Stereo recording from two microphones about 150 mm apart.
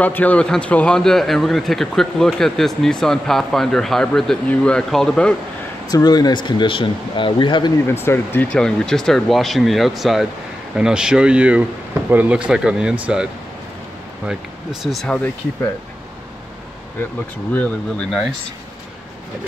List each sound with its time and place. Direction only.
0.0 s speech: 10° left (ahead or behind)
5.9 s speech: 25° left (ahead or behind)
8.0 s speech: 15° left (ahead or behind)
17.6 s speech: 10° left (ahead or behind)